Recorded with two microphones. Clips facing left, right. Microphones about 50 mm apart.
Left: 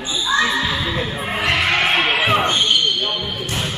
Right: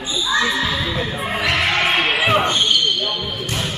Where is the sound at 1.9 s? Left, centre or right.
Centre.